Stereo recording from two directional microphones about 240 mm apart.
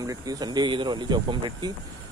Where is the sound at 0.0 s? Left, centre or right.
Centre.